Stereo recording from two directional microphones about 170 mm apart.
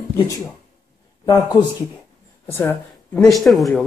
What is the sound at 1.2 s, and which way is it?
Speech, 20° left (ahead or behind).